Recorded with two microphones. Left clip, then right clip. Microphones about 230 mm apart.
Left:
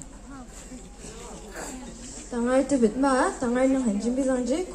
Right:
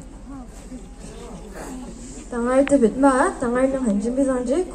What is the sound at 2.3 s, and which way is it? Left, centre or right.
A woman's voice, right.